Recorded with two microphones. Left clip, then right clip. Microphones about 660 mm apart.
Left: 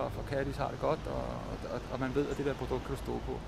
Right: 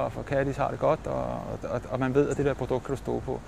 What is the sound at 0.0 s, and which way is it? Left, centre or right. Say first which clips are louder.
Speech: right 7 dB; right.